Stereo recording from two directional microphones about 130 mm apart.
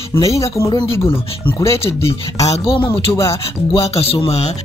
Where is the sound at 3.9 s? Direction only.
50° left (ahead or behind).